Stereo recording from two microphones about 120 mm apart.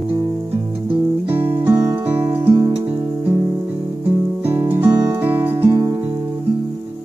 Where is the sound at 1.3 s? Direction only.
15° right (ahead or behind).